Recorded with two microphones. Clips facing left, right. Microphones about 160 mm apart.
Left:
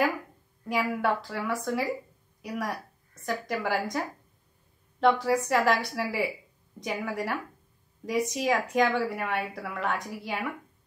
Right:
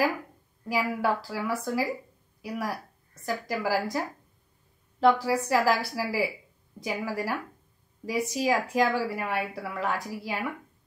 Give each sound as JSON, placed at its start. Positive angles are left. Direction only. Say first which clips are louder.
{"t": 0.7, "sound": "a woman's voice", "louder": "even", "side_deg": 0}
{"t": 5.0, "sound": "a woman's voice", "louder": "right 1 dB", "side_deg": 0}